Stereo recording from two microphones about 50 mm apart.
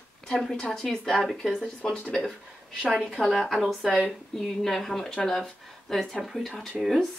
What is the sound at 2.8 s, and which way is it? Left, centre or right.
Speech, right.